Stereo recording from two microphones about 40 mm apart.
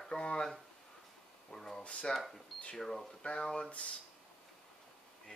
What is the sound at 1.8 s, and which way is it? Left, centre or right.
Speech, left.